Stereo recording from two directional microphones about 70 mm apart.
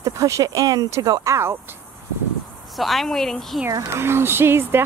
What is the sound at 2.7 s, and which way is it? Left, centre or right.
Speech, centre.